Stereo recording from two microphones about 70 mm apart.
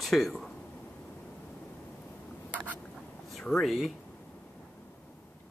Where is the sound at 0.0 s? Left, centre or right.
Centre.